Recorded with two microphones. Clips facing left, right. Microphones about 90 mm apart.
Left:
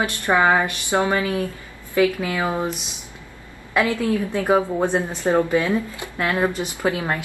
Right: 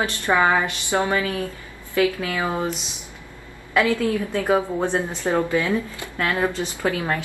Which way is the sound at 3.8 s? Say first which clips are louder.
Even; 20° left (ahead or behind).